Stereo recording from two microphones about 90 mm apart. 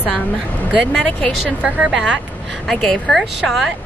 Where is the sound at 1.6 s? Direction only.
15° right (ahead or behind).